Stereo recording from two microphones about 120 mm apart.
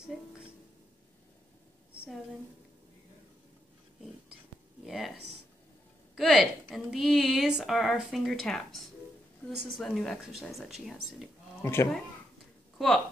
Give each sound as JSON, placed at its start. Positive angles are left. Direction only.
{"t": 4.8, "sound": "a sound", "side_deg": 0}
{"t": 6.1, "sound": "a woman's voice", "side_deg": -5}
{"t": 11.6, "sound": "speech", "side_deg": 20}
{"t": 12.7, "sound": "speech", "side_deg": 0}